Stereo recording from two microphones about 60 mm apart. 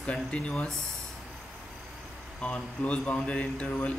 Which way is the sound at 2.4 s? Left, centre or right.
Centre.